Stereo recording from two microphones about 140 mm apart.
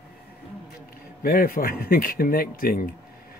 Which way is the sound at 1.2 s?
90° left.